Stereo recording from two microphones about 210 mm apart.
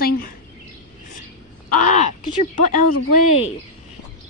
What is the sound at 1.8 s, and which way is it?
Speech, 35° left (ahead or behind).